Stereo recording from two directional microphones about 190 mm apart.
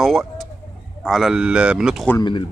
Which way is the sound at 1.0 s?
Centre (ahead or behind).